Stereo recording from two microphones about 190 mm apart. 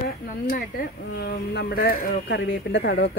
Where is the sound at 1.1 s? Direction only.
60° left (ahead or behind).